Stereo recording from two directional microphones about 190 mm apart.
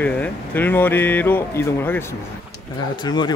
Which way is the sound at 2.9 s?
20° left (ahead or behind).